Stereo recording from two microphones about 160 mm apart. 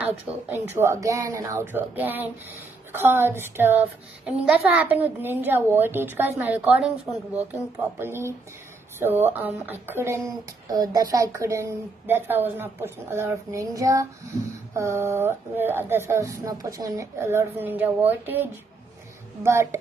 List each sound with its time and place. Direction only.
0.5 s speech: 15° right (ahead or behind)